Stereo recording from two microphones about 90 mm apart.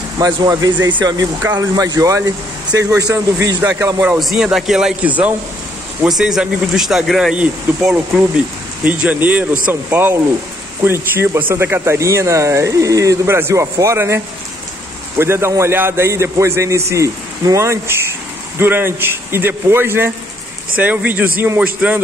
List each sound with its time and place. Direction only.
0.2 s a man's voice: 45° right (ahead or behind)
3.8 s a man's voice: 25° right (ahead or behind)
4.2 s speech: 5° right (ahead or behind)
5.0 s speech: 15° right (ahead or behind)
6.0 s speech: 5° right (ahead or behind)
8.8 s a man's voice: 15° right (ahead or behind)